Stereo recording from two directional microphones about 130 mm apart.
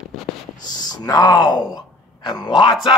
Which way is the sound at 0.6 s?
30° left (ahead or behind).